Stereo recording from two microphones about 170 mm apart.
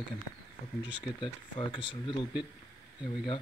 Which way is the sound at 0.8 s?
25° left (ahead or behind).